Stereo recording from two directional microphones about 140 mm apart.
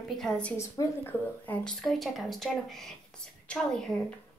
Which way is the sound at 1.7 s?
Centre (ahead or behind).